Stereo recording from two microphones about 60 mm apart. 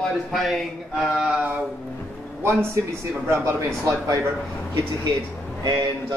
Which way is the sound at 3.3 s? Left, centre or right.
Right.